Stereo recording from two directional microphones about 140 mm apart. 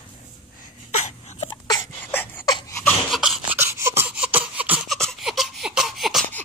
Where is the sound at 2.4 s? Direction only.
30° left (ahead or behind).